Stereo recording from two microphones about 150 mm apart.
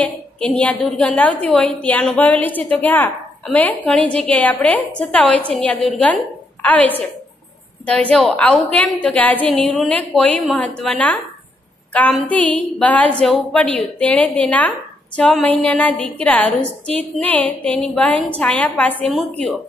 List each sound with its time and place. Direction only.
0.0 s a woman's voice: 10° left (ahead or behind)
8.1 s a woman's voice: 5° left (ahead or behind)